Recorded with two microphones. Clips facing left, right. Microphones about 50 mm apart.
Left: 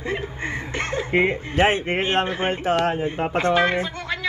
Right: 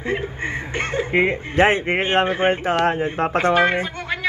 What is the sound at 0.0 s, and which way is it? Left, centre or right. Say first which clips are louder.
Chuckle: right 3 dB; centre.